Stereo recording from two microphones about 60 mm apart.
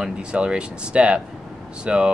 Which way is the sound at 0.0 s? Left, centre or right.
Centre.